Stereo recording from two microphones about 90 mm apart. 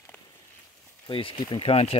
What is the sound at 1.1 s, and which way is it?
Speech, 80° left.